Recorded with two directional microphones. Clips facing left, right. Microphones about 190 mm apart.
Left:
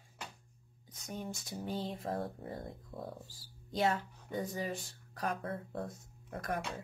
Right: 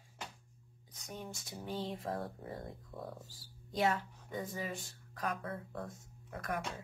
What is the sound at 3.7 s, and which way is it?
Speech, 30° left (ahead or behind).